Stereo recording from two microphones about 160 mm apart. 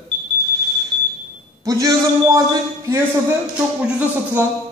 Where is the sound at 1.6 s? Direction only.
20° right (ahead or behind).